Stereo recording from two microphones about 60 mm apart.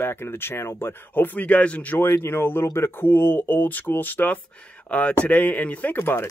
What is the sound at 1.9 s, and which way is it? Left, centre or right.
Speech, left.